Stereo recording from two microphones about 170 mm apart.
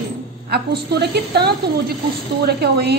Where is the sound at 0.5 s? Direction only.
70° right (ahead or behind).